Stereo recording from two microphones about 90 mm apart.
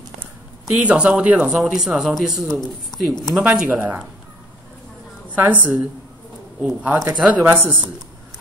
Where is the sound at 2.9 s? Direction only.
50° left (ahead or behind).